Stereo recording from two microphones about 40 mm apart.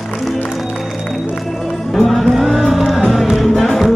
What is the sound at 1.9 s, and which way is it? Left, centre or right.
Vehicle, centre.